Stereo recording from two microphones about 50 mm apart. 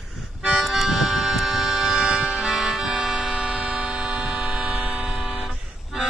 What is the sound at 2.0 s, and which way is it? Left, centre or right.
Music, right.